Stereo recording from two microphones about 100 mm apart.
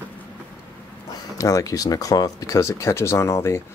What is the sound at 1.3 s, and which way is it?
Speech, 35° left (ahead or behind).